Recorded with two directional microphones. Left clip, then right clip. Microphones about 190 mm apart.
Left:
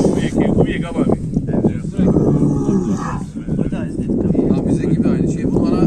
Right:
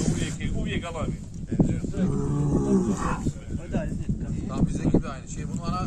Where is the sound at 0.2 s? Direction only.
60° right (ahead or behind).